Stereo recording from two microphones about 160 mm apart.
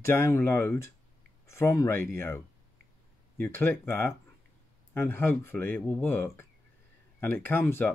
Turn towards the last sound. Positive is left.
turn(degrees=15)  # may be behind; listen again after turning